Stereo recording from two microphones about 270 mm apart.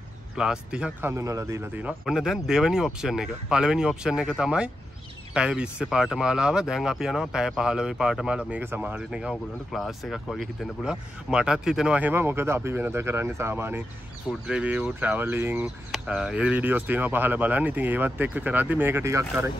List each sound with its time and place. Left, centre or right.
0.4 s speech: centre